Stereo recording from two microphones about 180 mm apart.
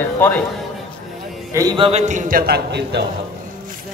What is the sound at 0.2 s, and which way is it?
Speech, 10° left (ahead or behind).